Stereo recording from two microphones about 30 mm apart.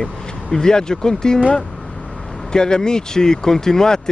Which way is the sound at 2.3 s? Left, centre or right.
Centre.